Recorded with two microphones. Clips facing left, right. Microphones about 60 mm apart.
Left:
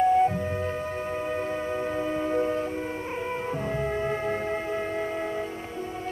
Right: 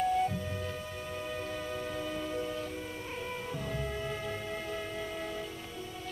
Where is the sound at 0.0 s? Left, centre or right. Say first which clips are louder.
Left 9 dB; left.